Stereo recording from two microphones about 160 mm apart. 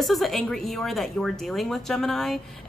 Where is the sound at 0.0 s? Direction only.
Centre (ahead or behind).